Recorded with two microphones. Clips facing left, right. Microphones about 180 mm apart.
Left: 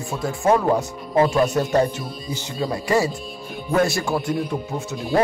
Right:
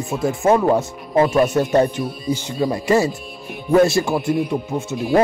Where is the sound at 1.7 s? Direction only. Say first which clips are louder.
Right 3 dB; 20° right (ahead or behind).